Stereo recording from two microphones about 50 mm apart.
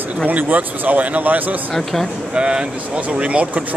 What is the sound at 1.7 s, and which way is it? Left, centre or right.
Speech, centre.